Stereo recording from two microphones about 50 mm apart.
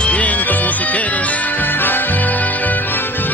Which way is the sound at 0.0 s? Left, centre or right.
Left.